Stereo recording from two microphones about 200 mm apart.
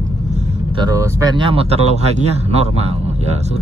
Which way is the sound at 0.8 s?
15° right (ahead or behind).